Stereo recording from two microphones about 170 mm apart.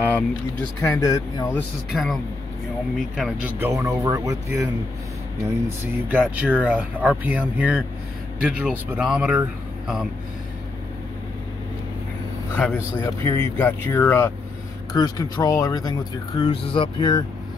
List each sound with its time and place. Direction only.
0.0 s speech: 10° left (ahead or behind)
1.9 s speech: centre (ahead or behind)
3.5 s speech: 15° right (ahead or behind)
6.0 s speech: 10° right (ahead or behind)
12.6 s speech: 5° left (ahead or behind); by 17.2 s 25° left (ahead or behind)